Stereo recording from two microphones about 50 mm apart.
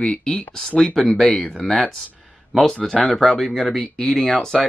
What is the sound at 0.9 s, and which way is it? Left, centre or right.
Speech, centre.